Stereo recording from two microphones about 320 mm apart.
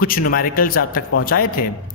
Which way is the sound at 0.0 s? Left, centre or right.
Left.